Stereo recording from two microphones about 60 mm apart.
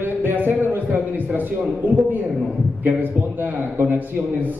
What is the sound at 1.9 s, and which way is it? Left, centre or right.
A man's voice, right.